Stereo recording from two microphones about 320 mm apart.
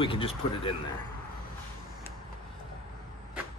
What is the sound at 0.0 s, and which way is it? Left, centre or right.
Speech, centre.